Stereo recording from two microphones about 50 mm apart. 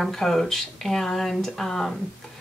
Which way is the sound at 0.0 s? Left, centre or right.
Centre.